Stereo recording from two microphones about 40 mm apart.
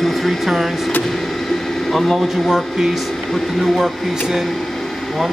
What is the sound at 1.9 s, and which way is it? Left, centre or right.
Speech, centre.